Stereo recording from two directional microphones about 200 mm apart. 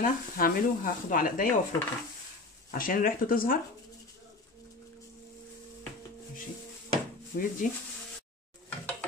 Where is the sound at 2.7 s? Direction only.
45° left (ahead or behind).